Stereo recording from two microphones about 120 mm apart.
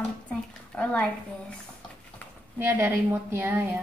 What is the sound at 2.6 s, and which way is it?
A woman's voice, 20° right (ahead or behind).